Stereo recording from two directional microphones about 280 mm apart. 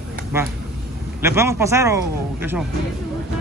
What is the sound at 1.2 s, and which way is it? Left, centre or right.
A man's voice, centre.